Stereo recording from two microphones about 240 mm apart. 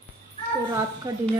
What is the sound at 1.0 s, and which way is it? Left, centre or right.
Speech, centre.